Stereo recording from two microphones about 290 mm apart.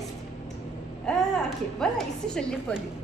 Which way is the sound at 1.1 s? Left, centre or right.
Centre.